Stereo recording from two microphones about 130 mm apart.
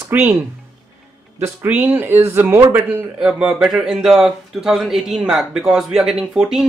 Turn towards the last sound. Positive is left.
turn(degrees=-5)  # may be behind; listen again after turning